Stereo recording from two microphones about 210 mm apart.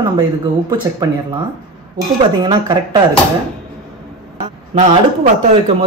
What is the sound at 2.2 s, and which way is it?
Speech, 20° right (ahead or behind).